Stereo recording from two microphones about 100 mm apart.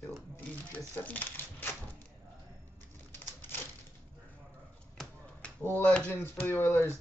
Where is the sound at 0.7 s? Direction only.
15° left (ahead or behind).